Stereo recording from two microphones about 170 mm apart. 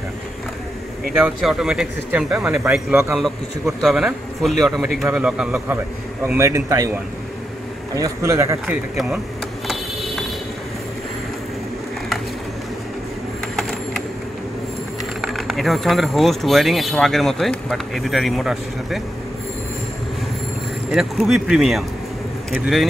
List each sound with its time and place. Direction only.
1.2 s a man's voice: 5° right (ahead or behind)
8.6 s speech: 5° right (ahead or behind)
9.7 s mechanisms: centre (ahead or behind)
13.6 s a sound: centre (ahead or behind)
15.2 s speech: centre (ahead or behind)
20.9 s speech: 5° right (ahead or behind)